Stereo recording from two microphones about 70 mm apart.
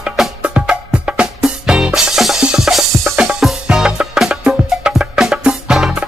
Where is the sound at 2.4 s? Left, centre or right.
Centre.